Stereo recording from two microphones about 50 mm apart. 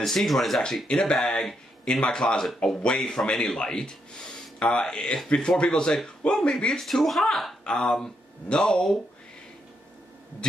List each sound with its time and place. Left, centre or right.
0.0 s speech: centre
0.8 s speech: centre
6.8 s speech: centre
7.6 s speech: centre